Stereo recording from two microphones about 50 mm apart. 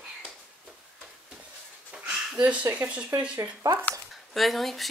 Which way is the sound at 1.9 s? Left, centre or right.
Right.